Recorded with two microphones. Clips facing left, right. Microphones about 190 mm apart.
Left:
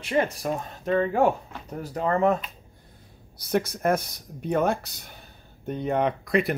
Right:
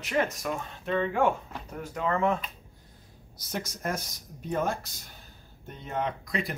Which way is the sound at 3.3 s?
60° left (ahead or behind).